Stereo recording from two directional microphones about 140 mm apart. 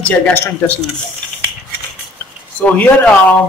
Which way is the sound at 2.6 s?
10° left (ahead or behind).